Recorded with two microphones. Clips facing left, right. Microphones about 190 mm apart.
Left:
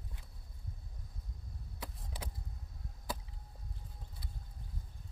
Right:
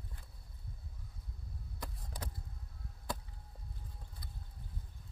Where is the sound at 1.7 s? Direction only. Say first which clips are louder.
Even; 5° left (ahead or behind).